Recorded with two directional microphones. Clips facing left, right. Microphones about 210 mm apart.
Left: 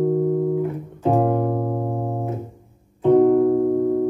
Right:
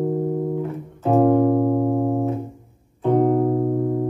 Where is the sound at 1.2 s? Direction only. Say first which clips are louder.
Right 5 dB; 5° left (ahead or behind).